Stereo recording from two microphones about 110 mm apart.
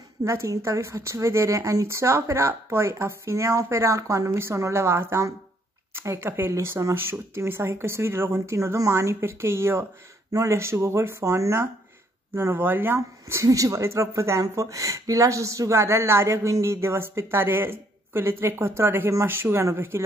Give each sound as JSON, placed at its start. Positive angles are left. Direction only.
{"t": 0.2, "sound": "speech", "side_deg": -30}